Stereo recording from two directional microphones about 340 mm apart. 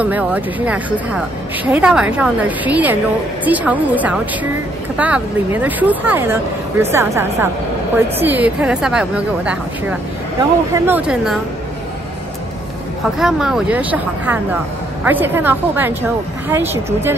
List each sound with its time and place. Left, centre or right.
0.0 s a woman's voice: centre
13.2 s a woman's voice: centre